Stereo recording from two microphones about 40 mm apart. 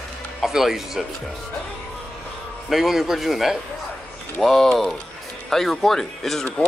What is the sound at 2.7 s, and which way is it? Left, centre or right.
Speech, centre.